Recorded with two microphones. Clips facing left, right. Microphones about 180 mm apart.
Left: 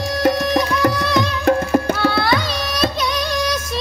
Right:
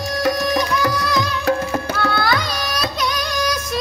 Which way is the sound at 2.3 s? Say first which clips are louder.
Left 2 dB; 25° left (ahead or behind).